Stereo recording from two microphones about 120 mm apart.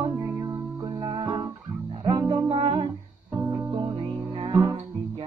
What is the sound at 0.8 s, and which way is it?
Music, 35° right (ahead or behind).